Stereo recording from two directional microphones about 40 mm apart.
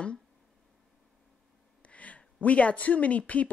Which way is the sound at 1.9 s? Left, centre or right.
Left.